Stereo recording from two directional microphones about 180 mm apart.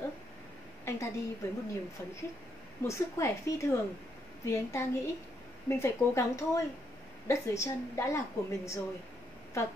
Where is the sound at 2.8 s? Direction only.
15° left (ahead or behind).